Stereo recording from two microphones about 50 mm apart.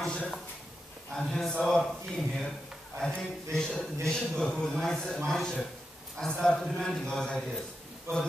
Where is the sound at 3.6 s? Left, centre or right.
Centre.